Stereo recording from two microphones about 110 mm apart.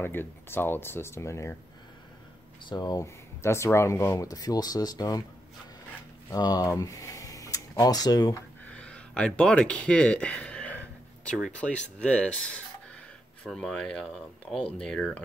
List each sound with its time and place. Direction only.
0.0 s speech: 20° left (ahead or behind)
2.7 s speech: 40° left (ahead or behind)
3.4 s speech: 25° left (ahead or behind)
6.3 s speech: 35° left (ahead or behind)
8.7 s a sound: 10° left (ahead or behind)
11.3 s speech: 5° left (ahead or behind)